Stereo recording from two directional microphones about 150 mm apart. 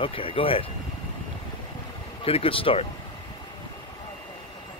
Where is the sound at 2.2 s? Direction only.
40° left (ahead or behind).